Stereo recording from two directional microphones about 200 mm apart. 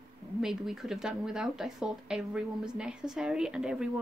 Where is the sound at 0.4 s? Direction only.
Centre (ahead or behind).